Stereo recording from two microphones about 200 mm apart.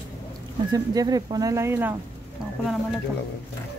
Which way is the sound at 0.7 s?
20° right (ahead or behind).